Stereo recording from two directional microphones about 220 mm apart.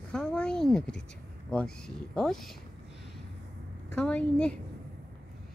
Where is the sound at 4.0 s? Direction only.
5° left (ahead or behind).